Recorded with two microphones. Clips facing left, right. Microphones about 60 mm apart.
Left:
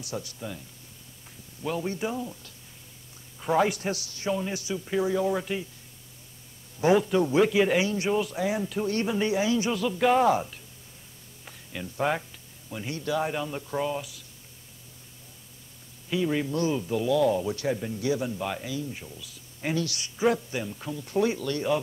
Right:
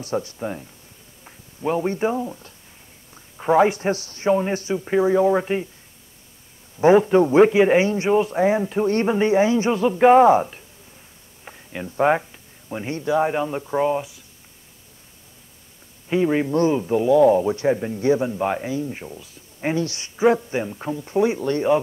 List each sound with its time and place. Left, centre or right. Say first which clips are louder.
0.0 s speech: right 10 dB; right
6.8 s speech: right 8 dB; right
16.1 s speech: right 7 dB; right